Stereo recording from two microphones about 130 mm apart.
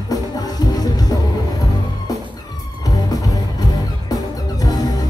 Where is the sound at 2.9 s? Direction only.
25° left (ahead or behind).